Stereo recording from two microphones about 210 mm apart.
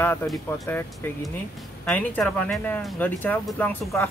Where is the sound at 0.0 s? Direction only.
10° left (ahead or behind).